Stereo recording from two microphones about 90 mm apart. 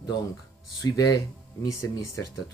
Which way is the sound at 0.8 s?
45° left (ahead or behind).